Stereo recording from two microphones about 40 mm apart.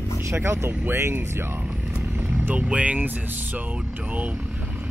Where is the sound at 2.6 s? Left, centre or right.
Right.